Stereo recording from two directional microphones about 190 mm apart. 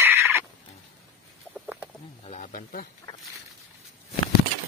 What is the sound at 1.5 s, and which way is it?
Chicken, 10° right (ahead or behind).